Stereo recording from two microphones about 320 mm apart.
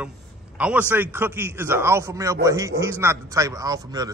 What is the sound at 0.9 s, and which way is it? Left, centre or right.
A man's voice, centre.